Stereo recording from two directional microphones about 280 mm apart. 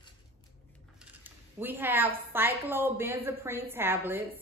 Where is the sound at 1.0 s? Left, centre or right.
Centre.